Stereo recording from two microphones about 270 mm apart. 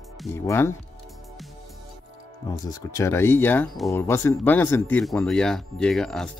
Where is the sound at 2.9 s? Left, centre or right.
Centre.